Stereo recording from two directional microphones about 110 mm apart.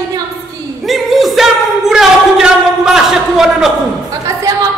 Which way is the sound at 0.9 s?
Centre (ahead or behind).